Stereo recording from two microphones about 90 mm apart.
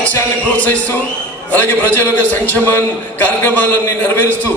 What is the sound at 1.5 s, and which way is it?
A man's voice, 20° left (ahead or behind).